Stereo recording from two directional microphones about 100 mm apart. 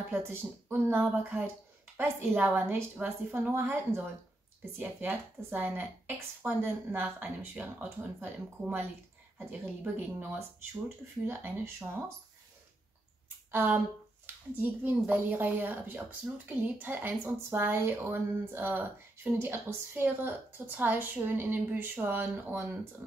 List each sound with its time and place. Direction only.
0.1 s speech: 20° right (ahead or behind)
13.5 s speech: 20° right (ahead or behind)